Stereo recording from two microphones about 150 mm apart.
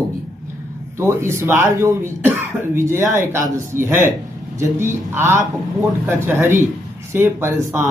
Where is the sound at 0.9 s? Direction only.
15° right (ahead or behind).